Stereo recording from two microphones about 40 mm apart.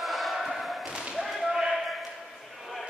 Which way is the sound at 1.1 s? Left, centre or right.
Centre.